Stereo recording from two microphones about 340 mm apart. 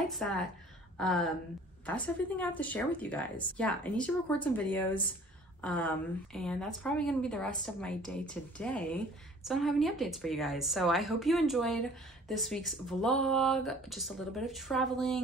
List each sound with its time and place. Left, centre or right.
0.1 s a woman's voice: centre